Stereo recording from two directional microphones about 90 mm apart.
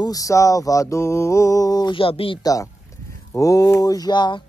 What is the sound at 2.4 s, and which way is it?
Mantra, 40° left (ahead or behind).